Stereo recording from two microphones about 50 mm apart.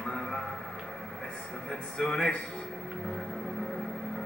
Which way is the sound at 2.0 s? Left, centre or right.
Centre.